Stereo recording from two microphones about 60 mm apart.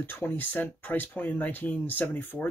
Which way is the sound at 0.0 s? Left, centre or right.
Left.